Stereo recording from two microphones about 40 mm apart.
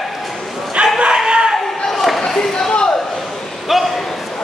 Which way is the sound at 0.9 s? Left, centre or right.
Centre.